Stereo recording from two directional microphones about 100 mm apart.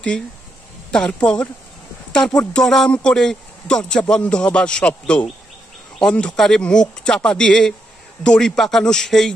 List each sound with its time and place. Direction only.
0.9 s a man's voice: 10° left (ahead or behind)